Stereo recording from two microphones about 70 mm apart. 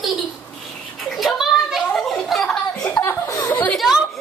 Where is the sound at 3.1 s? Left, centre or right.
Left.